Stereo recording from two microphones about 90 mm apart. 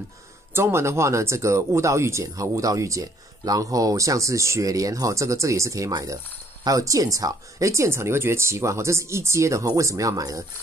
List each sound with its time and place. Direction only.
0.5 s speech: 25° right (ahead or behind)